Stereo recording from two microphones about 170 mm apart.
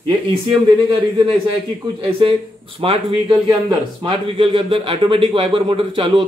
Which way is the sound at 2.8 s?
35° right (ahead or behind).